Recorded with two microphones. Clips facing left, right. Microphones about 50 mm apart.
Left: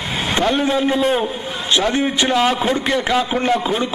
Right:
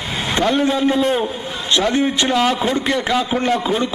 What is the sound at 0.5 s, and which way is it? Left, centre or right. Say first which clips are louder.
A man's voice: right 1 dB; centre.